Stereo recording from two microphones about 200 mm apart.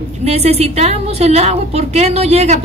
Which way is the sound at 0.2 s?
30° right (ahead or behind).